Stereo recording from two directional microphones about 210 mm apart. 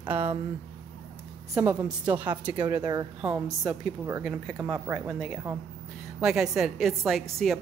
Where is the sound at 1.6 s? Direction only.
5° right (ahead or behind).